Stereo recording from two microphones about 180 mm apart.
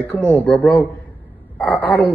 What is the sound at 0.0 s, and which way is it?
A man's voice, 10° left (ahead or behind).